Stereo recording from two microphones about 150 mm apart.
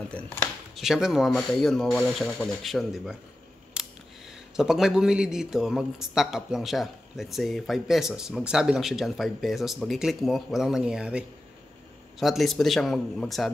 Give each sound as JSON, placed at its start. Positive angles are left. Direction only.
{"t": 0.7, "sound": "a man's voice", "side_deg": 0}
{"t": 3.8, "sound": "camera", "side_deg": -5}
{"t": 4.6, "sound": "a man's voice", "side_deg": -5}